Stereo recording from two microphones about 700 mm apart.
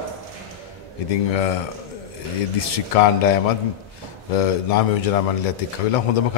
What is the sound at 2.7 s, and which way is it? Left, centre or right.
A man's voice, left.